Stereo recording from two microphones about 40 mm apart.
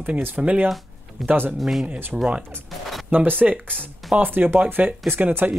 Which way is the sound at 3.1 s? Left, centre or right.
Right.